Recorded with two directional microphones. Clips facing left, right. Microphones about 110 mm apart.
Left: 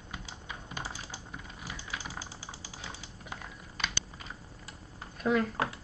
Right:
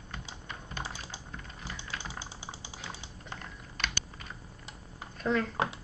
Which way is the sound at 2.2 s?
20° right (ahead or behind).